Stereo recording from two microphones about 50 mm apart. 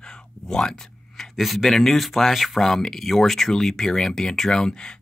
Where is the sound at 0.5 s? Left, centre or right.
Centre.